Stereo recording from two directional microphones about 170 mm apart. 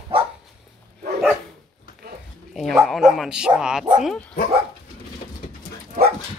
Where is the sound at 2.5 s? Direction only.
Centre (ahead or behind).